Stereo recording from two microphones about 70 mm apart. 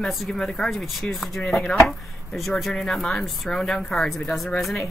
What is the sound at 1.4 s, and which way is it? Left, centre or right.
Speech, centre.